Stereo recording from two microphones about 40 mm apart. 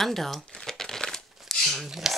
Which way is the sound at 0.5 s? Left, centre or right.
Centre.